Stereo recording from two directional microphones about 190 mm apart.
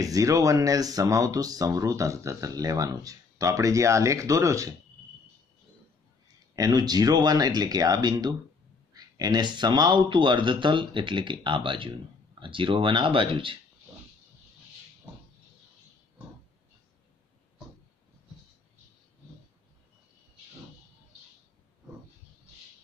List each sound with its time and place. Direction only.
0.0 s speech: 15° right (ahead or behind)
6.2 s speech: 20° right (ahead or behind)